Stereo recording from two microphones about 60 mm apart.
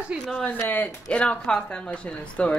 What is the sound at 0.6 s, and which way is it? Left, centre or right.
Speech, left.